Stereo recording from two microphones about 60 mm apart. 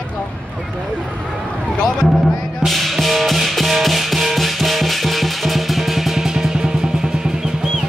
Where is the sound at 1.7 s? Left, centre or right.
Centre.